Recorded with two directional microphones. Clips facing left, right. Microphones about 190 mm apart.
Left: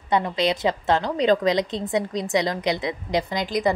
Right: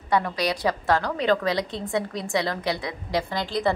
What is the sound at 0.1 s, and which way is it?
A woman's voice, 20° left (ahead or behind).